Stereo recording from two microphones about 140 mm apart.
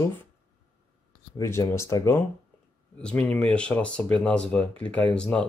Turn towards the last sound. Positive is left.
turn(degrees=5)  # may be behind; listen again after turning